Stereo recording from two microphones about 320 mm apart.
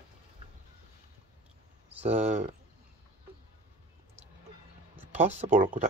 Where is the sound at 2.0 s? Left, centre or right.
Right.